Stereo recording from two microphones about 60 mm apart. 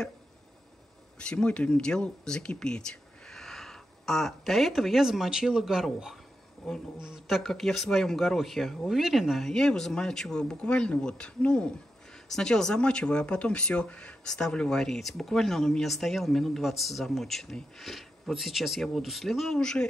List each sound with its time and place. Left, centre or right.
1.2 s speech: centre
7.2 s speech: centre
9.5 s speech: centre